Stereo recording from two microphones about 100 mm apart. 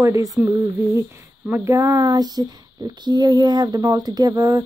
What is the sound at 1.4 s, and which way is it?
Speech, 25° right (ahead or behind).